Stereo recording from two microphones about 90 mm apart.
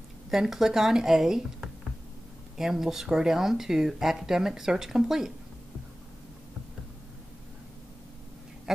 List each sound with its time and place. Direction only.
0.3 s speech: 5° right (ahead or behind)
8.7 s bird: 5° right (ahead or behind)